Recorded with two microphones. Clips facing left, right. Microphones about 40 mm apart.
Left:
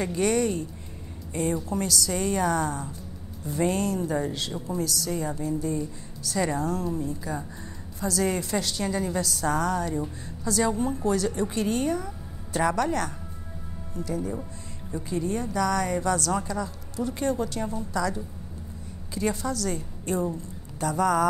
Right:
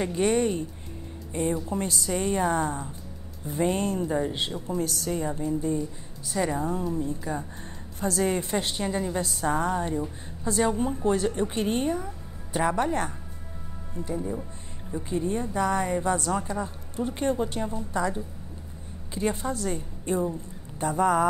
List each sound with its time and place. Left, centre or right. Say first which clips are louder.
0.0 s a woman's voice: even; right
1.7 s a woman's voice: left 1 dB; right
6.2 s a woman's voice: left 1 dB; centre
7.1 s a woman's voice: right 1 dB; right; by 20.3 s centre
20.7 s a woman's voice: right 1 dB; right